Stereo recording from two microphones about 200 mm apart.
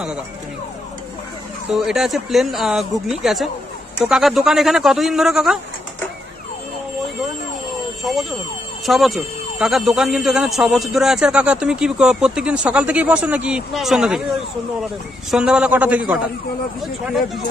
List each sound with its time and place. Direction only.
1.7 s speech: centre (ahead or behind)
8.0 s speech: centre (ahead or behind)
15.3 s speech: 5° right (ahead or behind)